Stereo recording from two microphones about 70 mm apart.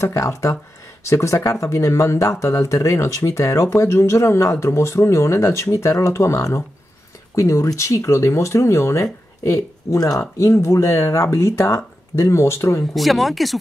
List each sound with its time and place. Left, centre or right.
0.1 s speech: left
12.9 s speech: centre